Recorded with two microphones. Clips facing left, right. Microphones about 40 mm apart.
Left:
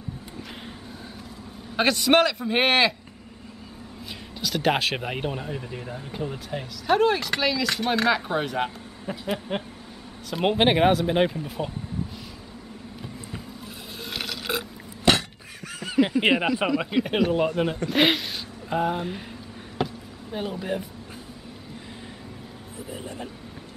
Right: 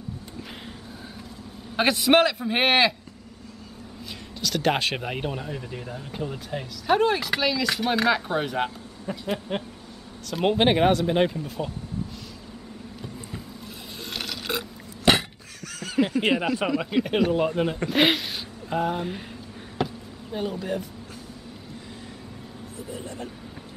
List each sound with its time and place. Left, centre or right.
1.8 s speech: centre
4.4 s speech: centre
14.1 s burping: centre
15.1 s cough: centre
15.6 s a sound: centre
16.2 s speech: left
16.6 s speech: centre
19.8 s a sound: centre
22.8 s speech: centre